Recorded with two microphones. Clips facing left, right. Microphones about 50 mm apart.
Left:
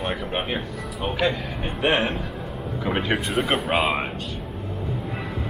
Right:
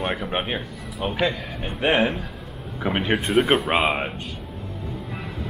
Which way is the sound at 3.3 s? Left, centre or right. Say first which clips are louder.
Right 7 dB; centre.